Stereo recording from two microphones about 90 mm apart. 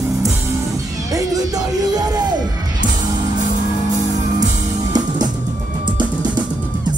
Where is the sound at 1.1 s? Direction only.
45° right (ahead or behind).